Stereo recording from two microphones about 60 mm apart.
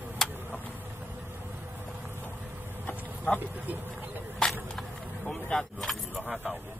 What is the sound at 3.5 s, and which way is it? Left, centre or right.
Speech, right.